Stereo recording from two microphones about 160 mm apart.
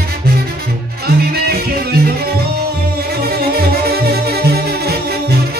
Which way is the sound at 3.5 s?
85° right.